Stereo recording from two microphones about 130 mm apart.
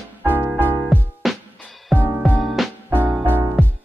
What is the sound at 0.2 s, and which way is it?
Music, 15° right (ahead or behind).